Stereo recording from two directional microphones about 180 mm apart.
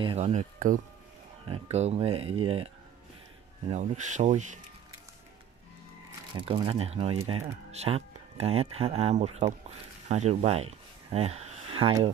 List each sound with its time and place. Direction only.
0.0 s speech: 35° right (ahead or behind)
6.3 s speech: 30° right (ahead or behind)
10.0 s a sound: 40° right (ahead or behind)